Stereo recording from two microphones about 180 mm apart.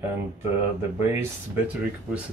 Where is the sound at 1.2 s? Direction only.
10° right (ahead or behind).